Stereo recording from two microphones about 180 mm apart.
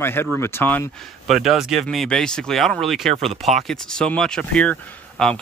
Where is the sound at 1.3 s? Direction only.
Centre (ahead or behind).